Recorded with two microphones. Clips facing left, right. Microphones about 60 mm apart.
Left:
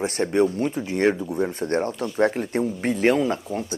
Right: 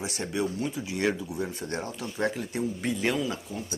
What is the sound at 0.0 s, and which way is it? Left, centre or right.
Speech, left.